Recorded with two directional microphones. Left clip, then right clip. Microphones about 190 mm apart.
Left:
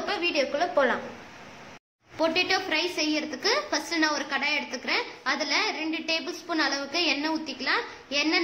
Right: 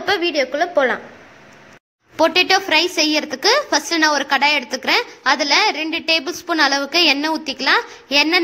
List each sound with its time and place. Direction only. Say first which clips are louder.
0.0 s a woman's voice: right 8 dB; 30° right (ahead or behind)
2.1 s a woman's voice: right 10 dB; 45° right (ahead or behind)